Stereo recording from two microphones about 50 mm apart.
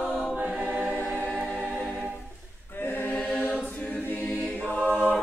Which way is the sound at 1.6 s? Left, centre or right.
Right.